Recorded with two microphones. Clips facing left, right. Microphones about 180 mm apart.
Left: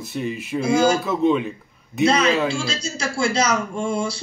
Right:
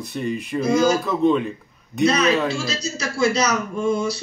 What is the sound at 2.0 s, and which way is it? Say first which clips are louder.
Speech: even; 30° left (ahead or behind).